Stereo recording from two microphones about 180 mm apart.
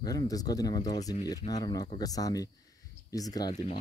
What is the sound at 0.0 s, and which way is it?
Speech, 20° left (ahead or behind).